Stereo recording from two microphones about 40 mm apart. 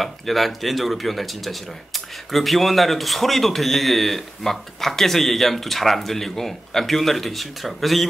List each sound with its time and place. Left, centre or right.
0.0 s a man's voice: centre